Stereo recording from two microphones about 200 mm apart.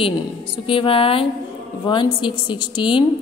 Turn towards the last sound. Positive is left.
turn(degrees=25)  # may be behind; listen again after turning